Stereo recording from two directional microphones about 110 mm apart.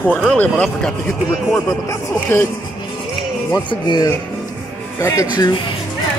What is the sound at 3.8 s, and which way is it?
Speech, 40° left (ahead or behind).